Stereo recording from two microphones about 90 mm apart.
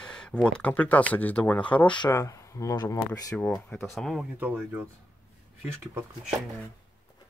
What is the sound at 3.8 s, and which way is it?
Speech, centre (ahead or behind).